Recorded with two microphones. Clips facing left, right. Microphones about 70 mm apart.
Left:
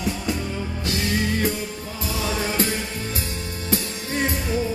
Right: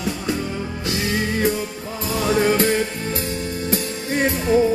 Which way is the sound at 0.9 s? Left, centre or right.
Right.